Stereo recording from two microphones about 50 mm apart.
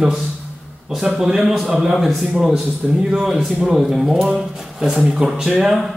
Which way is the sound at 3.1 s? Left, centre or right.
Centre.